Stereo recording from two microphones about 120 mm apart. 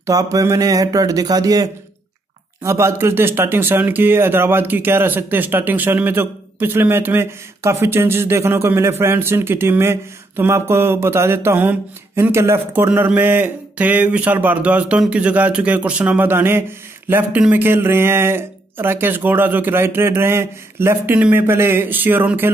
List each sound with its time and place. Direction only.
0.0 s speech: 30° right (ahead or behind)